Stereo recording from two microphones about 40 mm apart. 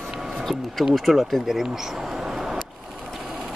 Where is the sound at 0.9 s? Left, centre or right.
Centre.